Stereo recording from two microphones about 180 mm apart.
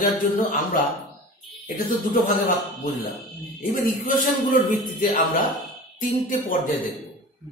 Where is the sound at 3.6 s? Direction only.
50° left (ahead or behind).